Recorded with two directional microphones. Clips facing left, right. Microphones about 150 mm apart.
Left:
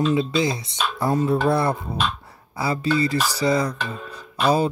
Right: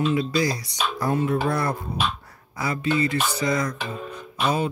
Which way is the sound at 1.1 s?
35° left (ahead or behind).